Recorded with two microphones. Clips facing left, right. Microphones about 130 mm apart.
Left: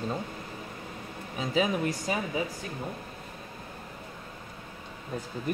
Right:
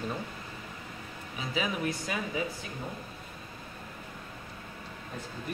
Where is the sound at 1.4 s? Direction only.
40° left (ahead or behind).